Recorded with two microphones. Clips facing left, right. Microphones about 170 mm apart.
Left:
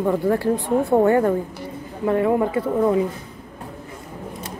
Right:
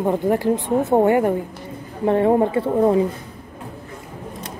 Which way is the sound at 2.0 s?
30° right (ahead or behind).